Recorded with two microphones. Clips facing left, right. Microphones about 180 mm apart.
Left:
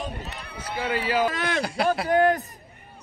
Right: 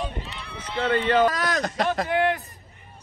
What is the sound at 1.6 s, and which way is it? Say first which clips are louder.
Speech: left 1 dB; 10° left (ahead or behind).